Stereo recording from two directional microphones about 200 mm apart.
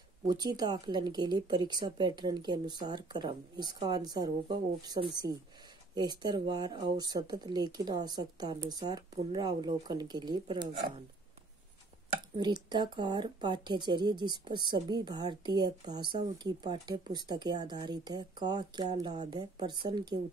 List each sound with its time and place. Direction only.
0.3 s speech: 20° right (ahead or behind)
12.4 s speech: 20° right (ahead or behind)